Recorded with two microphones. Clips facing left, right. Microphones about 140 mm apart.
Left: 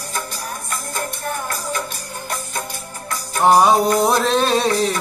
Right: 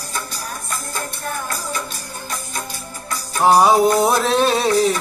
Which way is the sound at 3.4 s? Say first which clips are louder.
Right 1 dB; centre (ahead or behind).